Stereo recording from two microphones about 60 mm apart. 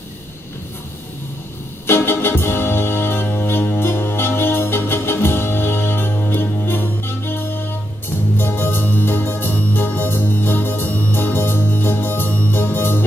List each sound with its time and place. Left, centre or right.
1.9 s music: left
8.4 s organ: left